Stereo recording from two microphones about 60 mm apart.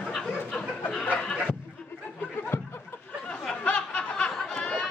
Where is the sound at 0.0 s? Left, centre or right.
Centre.